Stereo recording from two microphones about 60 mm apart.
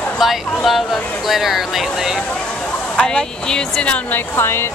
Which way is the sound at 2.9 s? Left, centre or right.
Centre.